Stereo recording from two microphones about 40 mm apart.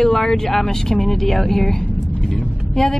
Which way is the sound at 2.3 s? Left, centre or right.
Centre.